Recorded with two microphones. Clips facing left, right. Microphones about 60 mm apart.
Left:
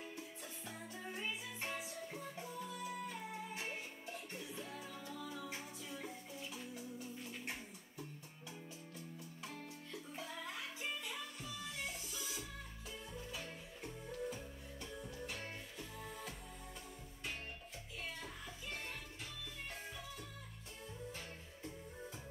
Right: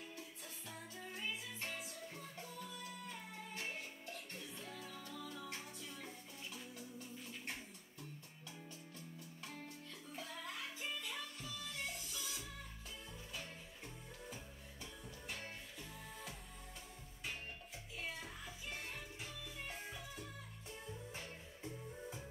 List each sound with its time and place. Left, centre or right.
0.7 s music: centre
10.1 s music: centre
18.0 s music: centre